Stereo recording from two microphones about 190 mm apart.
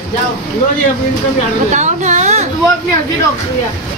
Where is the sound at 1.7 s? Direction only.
40° right (ahead or behind).